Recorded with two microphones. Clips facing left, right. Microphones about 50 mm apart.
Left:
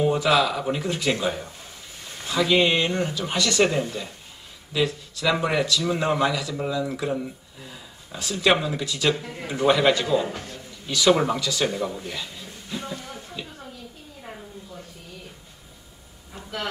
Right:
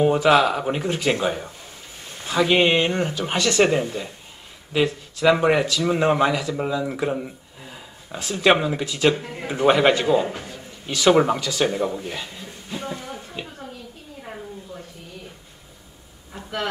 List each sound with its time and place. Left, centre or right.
0.0 s speech: right
10.2 s a man's voice: centre
10.9 s speech: right
12.9 s a sound: centre
16.3 s vehicle: right